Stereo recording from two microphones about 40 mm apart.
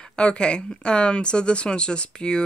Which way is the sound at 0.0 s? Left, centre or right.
Left.